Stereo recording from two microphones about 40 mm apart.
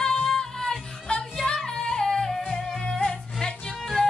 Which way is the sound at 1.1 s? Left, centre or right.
Left.